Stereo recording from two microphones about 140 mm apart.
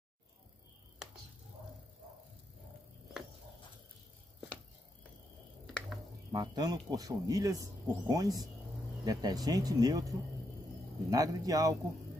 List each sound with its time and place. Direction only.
6.3 s speech: 30° right (ahead or behind)